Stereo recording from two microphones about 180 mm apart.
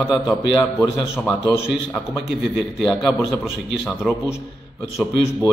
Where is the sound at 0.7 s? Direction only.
15° left (ahead or behind).